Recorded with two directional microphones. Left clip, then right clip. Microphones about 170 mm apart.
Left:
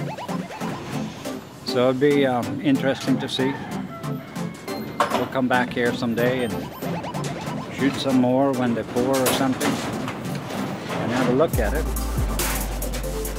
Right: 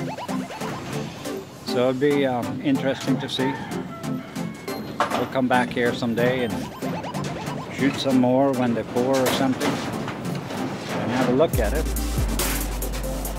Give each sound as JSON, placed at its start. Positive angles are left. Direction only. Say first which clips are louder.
{"t": 1.7, "sound": "speech", "louder": "left 2 dB", "side_deg": 20}
{"t": 4.9, "sound": "music", "louder": "left 2 dB", "side_deg": 55}
{"t": 5.3, "sound": "speech", "louder": "even", "side_deg": 0}
{"t": 7.8, "sound": "speech", "louder": "even", "side_deg": 0}
{"t": 11.3, "sound": "speech", "louder": "even", "side_deg": 0}